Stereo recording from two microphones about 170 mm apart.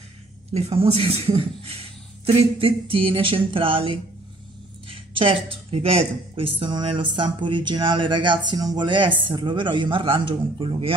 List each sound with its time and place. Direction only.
0.5 s a woman's voice: 40° right (ahead or behind)